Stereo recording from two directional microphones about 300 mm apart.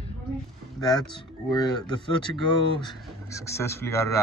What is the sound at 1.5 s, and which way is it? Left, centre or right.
Speech, centre.